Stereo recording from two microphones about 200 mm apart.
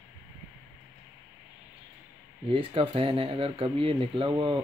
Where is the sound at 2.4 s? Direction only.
25° right (ahead or behind).